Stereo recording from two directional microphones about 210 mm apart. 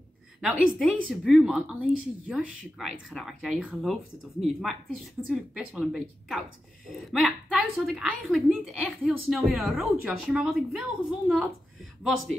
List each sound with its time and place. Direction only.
0.4 s a woman's voice: centre (ahead or behind)